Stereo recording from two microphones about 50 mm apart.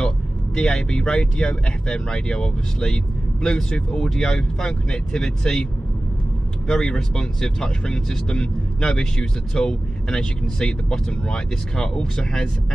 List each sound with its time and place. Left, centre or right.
0.6 s speech: centre
6.7 s speech: centre